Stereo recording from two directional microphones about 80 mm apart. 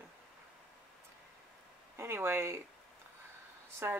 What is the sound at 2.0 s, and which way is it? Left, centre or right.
Speech, right.